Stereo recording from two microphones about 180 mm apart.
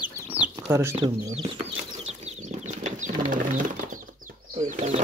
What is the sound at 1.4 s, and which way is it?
Chicken, 35° right (ahead or behind).